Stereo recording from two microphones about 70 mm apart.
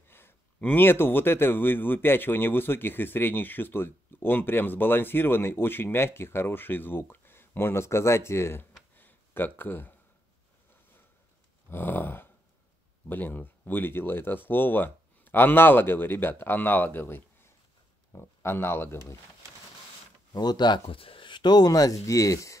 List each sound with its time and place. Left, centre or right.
0.1 s a man's voice: left
8.9 s a sound: left
11.7 s a man's voice: left
20.3 s speech: left